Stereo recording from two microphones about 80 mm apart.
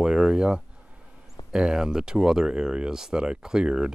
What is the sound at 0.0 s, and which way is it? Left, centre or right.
Speech, centre.